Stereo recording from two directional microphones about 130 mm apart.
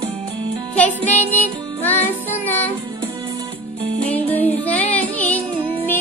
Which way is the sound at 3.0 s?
25° right (ahead or behind).